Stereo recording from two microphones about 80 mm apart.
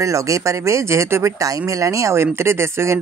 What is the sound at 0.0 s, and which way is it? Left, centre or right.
Speech, right.